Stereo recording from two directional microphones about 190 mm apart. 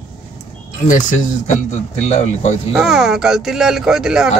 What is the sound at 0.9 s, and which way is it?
Speech, 40° left (ahead or behind).